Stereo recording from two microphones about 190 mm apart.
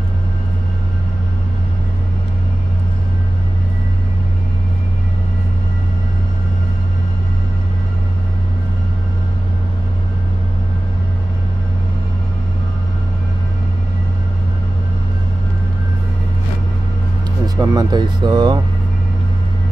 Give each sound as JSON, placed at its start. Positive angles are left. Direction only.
{"t": 17.6, "sound": "speech", "side_deg": -20}